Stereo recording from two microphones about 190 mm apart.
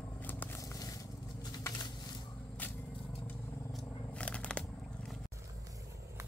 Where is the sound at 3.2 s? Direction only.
5° left (ahead or behind).